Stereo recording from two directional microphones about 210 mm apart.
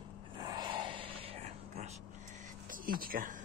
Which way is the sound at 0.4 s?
20° right (ahead or behind).